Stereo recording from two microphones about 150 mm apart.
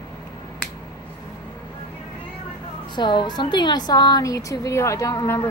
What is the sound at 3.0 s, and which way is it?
A woman's voice, 30° left (ahead or behind).